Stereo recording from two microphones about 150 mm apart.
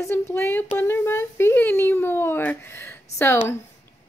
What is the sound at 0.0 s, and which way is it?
A woman's voice, 15° left (ahead or behind).